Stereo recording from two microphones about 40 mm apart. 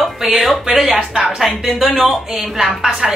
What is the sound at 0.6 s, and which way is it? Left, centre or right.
Speech, centre.